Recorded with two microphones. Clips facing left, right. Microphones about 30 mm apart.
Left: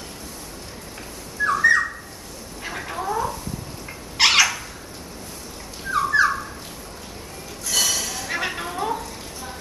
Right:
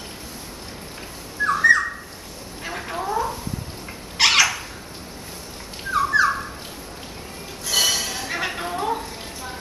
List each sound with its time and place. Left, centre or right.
1.4 s bird: centre
2.6 s cat: centre
4.2 s a sound: centre
5.9 s dog: centre
7.6 s music: centre
8.3 s a sound: centre